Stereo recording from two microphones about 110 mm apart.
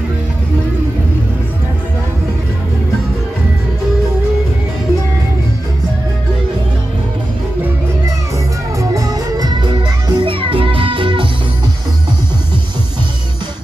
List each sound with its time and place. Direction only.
8.7 s music: 35° right (ahead or behind); by 11.2 s 50° right (ahead or behind)